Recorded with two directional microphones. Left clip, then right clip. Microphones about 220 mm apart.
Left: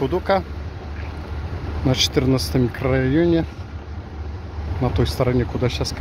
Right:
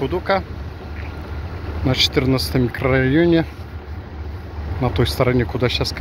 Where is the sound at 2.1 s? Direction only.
15° left (ahead or behind).